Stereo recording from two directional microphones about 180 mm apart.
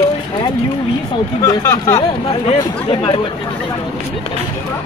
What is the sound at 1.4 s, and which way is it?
Speech, 15° left (ahead or behind).